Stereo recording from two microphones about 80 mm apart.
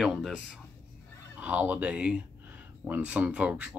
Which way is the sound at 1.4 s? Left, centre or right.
Centre.